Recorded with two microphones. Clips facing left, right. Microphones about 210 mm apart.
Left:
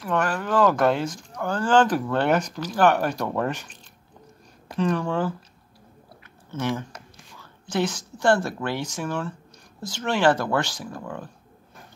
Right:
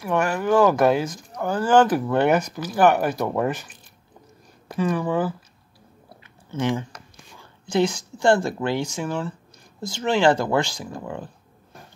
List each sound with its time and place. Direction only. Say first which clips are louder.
0.0 s speech: right 3 dB; 10° right (ahead or behind)
4.7 s speech: right 1 dB; 5° right (ahead or behind)
6.5 s a woman's voice: right 3 dB; 15° right (ahead or behind)